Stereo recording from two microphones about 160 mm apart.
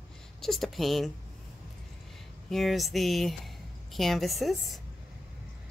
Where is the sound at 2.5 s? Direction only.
Centre (ahead or behind).